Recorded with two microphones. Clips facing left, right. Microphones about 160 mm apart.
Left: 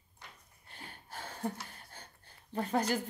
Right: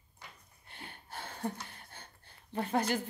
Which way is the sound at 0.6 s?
40° left (ahead or behind).